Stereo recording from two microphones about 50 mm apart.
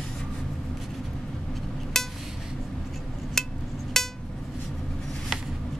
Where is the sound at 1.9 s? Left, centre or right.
Centre.